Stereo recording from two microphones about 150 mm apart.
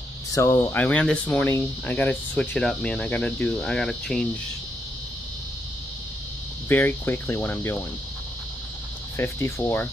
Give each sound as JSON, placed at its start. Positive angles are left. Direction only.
{"t": 0.3, "sound": "speech", "side_deg": 20}
{"t": 6.7, "sound": "speech", "side_deg": 15}
{"t": 9.1, "sound": "speech", "side_deg": 15}